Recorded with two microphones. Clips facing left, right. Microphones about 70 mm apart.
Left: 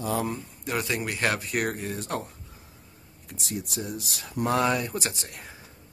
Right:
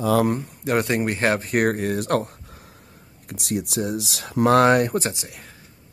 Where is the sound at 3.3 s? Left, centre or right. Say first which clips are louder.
Right 8 dB; right.